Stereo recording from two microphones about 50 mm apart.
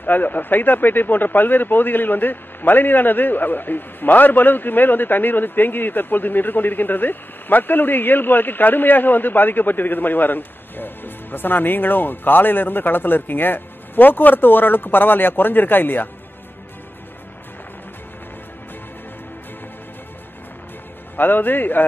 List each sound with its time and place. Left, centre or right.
0.0 s speech: left
21.2 s speech: left